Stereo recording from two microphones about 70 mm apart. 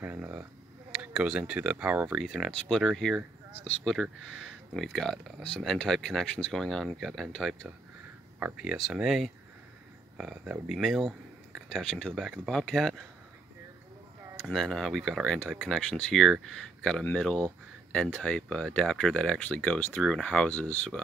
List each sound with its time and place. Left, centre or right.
0.0 s speech: right
1.1 s speech: centre
2.2 s speech: centre
8.4 s speech: right
8.6 s speech: centre
10.8 s speech: centre
11.7 s speech: centre
14.3 s speech: centre